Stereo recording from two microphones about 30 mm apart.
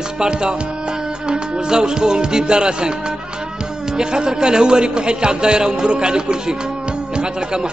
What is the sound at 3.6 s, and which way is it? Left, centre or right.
A man's voice, right.